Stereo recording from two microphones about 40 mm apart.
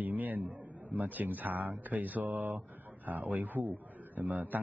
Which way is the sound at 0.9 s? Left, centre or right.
Right.